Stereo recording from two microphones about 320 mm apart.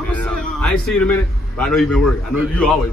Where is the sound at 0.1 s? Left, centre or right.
Centre.